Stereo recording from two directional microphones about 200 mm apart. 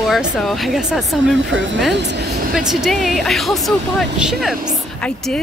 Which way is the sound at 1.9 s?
60° right (ahead or behind).